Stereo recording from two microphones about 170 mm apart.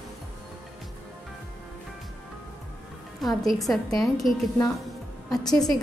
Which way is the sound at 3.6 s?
Centre (ahead or behind).